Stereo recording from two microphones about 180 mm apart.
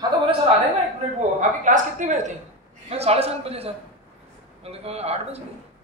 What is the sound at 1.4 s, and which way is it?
A woman's voice, 45° right (ahead or behind).